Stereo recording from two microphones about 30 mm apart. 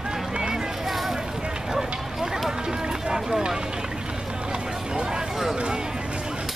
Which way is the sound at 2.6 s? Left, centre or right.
Right.